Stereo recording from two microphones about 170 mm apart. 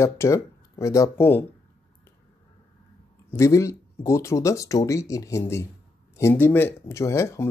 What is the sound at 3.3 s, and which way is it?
Speech, 15° left (ahead or behind).